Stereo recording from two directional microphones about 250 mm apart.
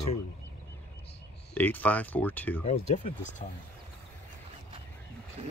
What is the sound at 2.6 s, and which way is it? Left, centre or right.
Speech, left.